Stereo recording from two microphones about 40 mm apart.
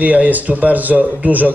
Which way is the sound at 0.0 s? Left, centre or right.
Right.